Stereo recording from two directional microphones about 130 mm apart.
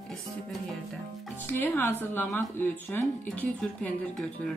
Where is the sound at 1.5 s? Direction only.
15° left (ahead or behind).